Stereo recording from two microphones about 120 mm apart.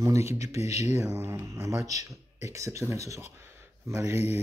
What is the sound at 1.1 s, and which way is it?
Speech, 25° right (ahead or behind).